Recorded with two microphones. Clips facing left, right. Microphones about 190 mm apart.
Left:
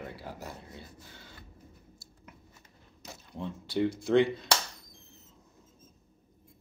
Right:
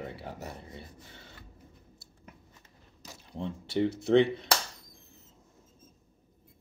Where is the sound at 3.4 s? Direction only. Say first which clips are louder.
Right 1 dB; 25° right (ahead or behind).